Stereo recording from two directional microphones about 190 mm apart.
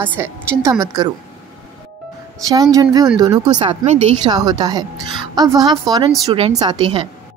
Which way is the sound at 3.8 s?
35° right (ahead or behind).